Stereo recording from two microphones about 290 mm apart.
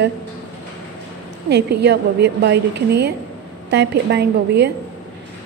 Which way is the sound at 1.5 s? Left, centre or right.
Right.